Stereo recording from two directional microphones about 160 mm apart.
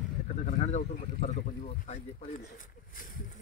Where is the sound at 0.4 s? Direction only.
50° left (ahead or behind).